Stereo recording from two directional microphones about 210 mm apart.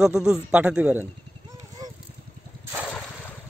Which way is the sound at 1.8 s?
15° right (ahead or behind).